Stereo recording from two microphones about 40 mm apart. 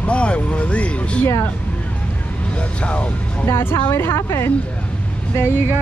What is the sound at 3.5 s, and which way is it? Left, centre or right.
A woman's voice, left.